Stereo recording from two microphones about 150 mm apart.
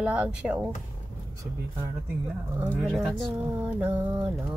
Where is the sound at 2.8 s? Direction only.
Centre (ahead or behind).